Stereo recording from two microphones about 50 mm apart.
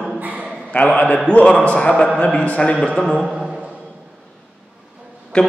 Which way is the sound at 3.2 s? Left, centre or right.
Centre.